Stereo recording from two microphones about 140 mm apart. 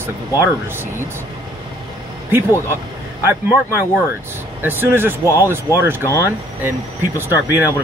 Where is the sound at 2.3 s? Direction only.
15° right (ahead or behind).